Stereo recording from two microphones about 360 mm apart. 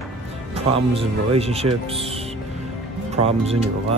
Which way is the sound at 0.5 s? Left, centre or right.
Centre.